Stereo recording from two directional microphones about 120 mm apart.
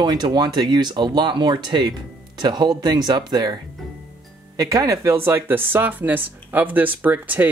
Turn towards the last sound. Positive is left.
turn(degrees=-15)  # may be behind; listen again after turning